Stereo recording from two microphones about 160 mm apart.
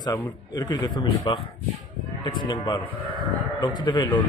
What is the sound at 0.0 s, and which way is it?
Speech, 25° left (ahead or behind).